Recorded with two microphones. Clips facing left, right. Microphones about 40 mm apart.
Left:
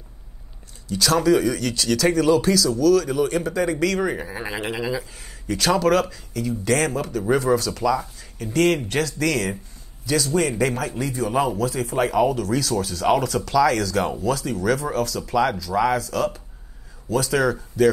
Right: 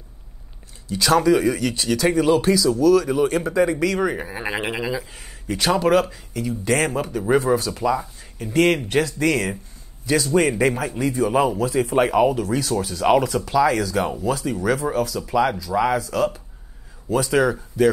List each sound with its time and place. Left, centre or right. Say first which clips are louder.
0.8 s speech: right 2 dB; right
5.1 s speech: even; right